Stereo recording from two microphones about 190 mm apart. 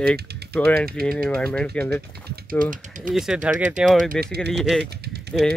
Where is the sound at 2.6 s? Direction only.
45° right (ahead or behind).